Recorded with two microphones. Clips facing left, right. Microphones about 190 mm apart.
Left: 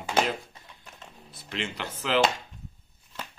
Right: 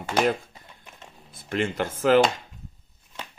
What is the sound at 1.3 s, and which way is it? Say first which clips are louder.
Speech: right 8 dB; 50° right (ahead or behind).